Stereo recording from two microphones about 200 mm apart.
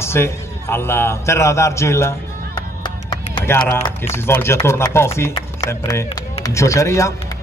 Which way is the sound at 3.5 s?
10° left (ahead or behind).